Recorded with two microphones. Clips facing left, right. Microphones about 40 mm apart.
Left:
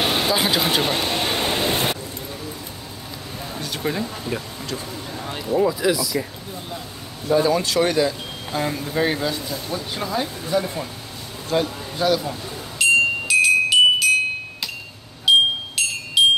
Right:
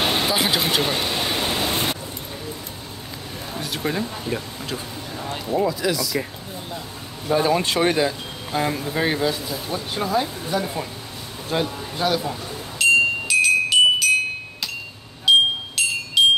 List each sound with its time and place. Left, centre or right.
0.0 s speech: centre
1.1 s a sound: centre
1.4 s pink noise: left
3.5 s a sound: centre
4.3 s speech: right
5.6 s speech: centre
7.2 s speech: right
8.5 s a man's voice: centre
12.7 s music: centre
15.2 s wind chime: centre